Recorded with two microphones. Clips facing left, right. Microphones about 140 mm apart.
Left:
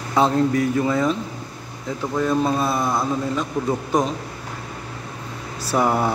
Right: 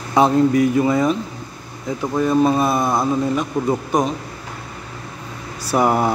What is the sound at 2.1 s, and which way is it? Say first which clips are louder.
A man's voice: right 4 dB; 15° right (ahead or behind).